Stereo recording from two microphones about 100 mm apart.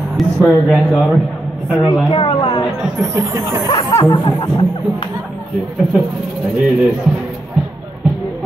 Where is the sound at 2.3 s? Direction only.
40° left (ahead or behind).